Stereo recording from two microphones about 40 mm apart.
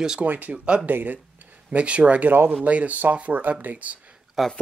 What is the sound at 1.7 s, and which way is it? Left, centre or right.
Speech, right.